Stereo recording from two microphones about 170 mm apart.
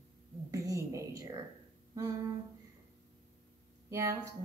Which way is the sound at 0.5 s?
20° right (ahead or behind).